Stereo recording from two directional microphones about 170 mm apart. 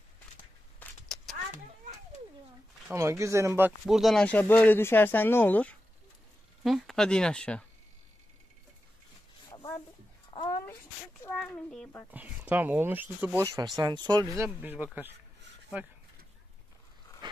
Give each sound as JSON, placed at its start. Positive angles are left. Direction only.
{"t": 0.7, "sound": "vehicle", "side_deg": 0}
{"t": 2.9, "sound": "speech", "side_deg": -15}
{"t": 9.5, "sound": "a sound", "side_deg": 15}
{"t": 10.3, "sound": "a sound", "side_deg": 30}
{"t": 11.2, "sound": "speech", "side_deg": 5}
{"t": 12.1, "sound": "speech", "side_deg": -10}
{"t": 13.7, "sound": "speech", "side_deg": -25}
{"t": 17.2, "sound": "dog", "side_deg": -25}